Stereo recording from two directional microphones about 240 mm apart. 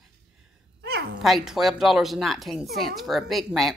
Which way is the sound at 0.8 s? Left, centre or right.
Right.